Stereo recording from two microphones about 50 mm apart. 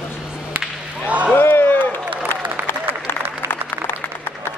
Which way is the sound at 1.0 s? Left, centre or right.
Right.